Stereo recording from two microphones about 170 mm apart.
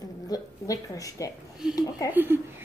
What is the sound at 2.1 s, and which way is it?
Speech, 10° right (ahead or behind).